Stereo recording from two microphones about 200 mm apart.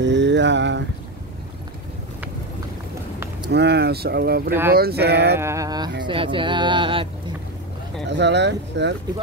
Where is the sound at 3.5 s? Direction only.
55° right (ahead or behind).